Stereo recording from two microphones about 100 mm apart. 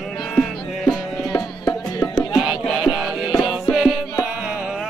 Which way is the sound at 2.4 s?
Centre (ahead or behind).